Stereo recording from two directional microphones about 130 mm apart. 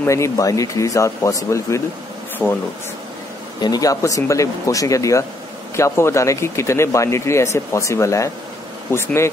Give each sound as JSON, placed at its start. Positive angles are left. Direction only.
{"t": 0.0, "sound": "speech", "side_deg": 25}
{"t": 2.4, "sound": "speech", "side_deg": 10}
{"t": 3.6, "sound": "speech", "side_deg": 30}